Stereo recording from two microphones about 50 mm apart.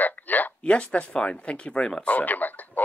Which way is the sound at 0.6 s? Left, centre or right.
Left.